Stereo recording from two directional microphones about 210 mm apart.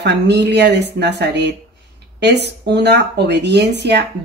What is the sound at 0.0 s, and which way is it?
Speech, 55° right (ahead or behind).